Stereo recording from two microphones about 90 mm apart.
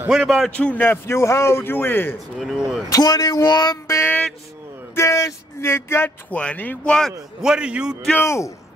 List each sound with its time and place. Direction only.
0.1 s a man's voice: 5° right (ahead or behind)
0.5 s a man's voice: 15° left (ahead or behind)
2.3 s speech: centre (ahead or behind)
2.9 s speech: 45° left (ahead or behind)
3.8 s a sound: 35° left (ahead or behind)
4.9 s a man's voice: 35° left (ahead or behind); by 6.8 s 20° left (ahead or behind)
6.9 s speech: 5° left (ahead or behind)
7.4 s a man's voice: 10° right (ahead or behind)
8.2 s speech: 30° left (ahead or behind)